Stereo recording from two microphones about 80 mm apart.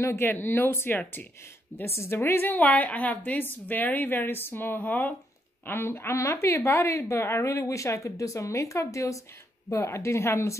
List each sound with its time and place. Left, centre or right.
0.0 s a woman's voice: left